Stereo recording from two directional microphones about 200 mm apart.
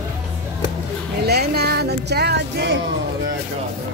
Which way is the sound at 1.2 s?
55° right (ahead or behind).